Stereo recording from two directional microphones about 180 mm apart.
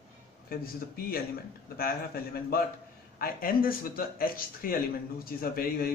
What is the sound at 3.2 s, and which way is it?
A man's voice, 55° left (ahead or behind).